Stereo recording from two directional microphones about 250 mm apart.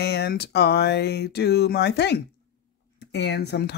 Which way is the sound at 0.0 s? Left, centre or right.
Left.